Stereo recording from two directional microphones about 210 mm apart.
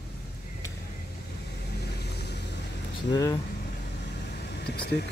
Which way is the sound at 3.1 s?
15° left (ahead or behind).